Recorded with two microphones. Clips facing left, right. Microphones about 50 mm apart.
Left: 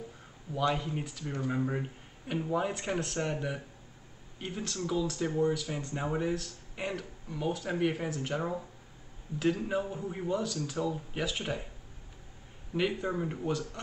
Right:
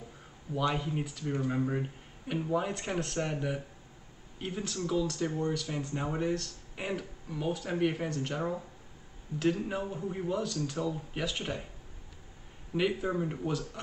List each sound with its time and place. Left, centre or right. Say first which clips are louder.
0.6 s speech: left 1 dB; centre
12.7 s speech: right 1 dB; centre